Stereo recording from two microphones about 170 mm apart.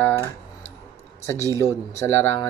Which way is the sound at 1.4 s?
15° left (ahead or behind).